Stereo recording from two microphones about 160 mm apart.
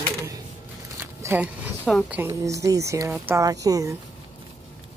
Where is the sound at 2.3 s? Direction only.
20° right (ahead or behind).